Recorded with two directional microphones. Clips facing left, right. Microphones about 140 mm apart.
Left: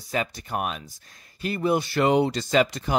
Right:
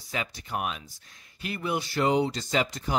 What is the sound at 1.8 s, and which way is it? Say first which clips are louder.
Speech: even; 65° left (ahead or behind).